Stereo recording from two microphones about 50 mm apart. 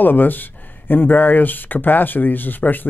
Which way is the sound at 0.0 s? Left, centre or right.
Left.